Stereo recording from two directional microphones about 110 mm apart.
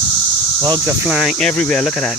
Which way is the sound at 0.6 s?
35° right (ahead or behind).